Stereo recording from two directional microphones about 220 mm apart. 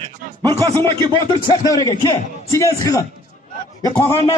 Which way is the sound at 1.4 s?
15° left (ahead or behind).